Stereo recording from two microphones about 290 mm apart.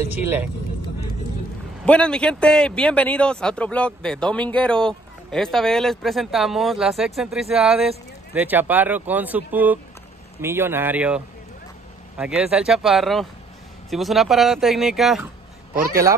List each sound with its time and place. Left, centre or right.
0.1 s speech: centre
1.9 s a man's voice: centre
15.7 s speech: right